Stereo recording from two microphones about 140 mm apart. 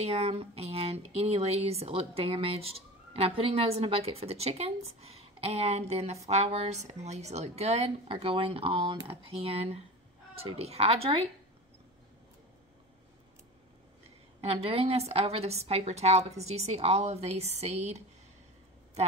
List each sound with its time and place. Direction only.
0.0 s speech: 45° right (ahead or behind)
14.4 s speech: 45° right (ahead or behind)